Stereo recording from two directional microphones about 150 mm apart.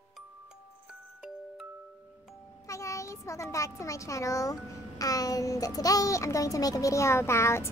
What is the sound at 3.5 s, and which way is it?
A child's voice, 20° left (ahead or behind).